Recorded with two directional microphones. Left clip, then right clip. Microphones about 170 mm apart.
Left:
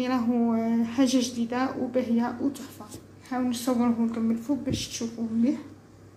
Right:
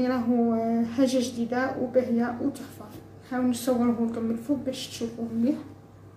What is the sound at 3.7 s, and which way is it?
Speech, 35° left (ahead or behind).